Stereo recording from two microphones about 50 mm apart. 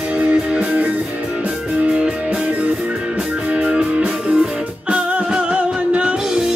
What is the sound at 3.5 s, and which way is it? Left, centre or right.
Music, right.